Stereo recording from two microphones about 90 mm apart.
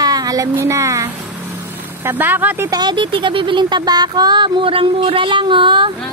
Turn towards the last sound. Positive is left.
turn(degrees=-65)  # may be behind; listen again after turning